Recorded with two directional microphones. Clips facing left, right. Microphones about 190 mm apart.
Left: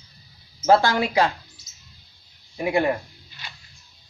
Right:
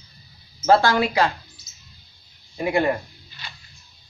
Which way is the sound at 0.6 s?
20° left (ahead or behind).